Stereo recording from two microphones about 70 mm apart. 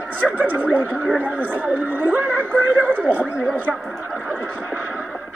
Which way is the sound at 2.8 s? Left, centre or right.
Right.